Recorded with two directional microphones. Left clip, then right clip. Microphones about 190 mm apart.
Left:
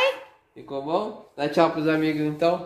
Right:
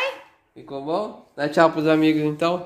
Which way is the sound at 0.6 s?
25° right (ahead or behind).